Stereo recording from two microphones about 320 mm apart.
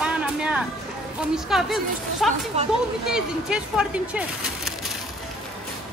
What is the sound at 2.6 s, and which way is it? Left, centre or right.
Speech, right.